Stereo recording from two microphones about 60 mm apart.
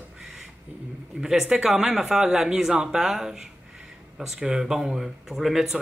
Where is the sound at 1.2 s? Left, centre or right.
Centre.